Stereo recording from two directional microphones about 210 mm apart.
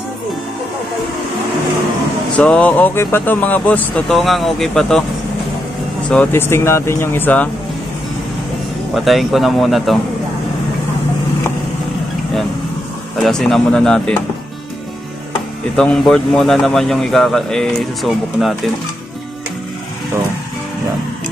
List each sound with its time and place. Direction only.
2.3 s speech: 5° left (ahead or behind)
6.0 s speech: 10° left (ahead or behind)
8.9 s speech: centre (ahead or behind)
13.2 s speech: centre (ahead or behind)
15.7 s speech: 5° left (ahead or behind)